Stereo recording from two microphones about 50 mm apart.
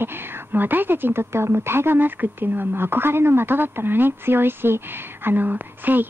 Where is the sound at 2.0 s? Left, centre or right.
Right.